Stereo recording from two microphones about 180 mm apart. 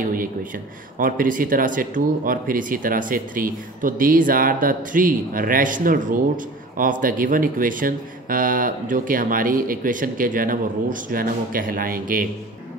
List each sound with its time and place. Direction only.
0.1 s speech: 50° right (ahead or behind)